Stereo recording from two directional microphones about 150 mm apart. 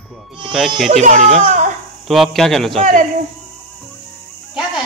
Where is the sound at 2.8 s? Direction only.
60° right (ahead or behind).